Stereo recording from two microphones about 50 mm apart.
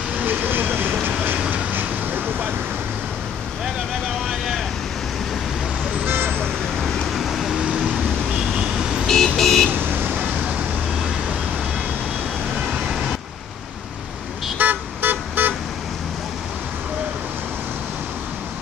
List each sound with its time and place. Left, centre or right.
0.2 s vehicle: right
6.0 s vehicle: right
7.2 s vehicle: centre
9.0 s vehicle: centre
9.7 s vehicle: right
12.5 s vehicle: centre
14.6 s vehicle: right